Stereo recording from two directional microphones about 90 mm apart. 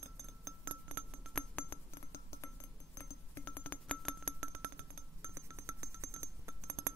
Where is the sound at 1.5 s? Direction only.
25° left (ahead or behind).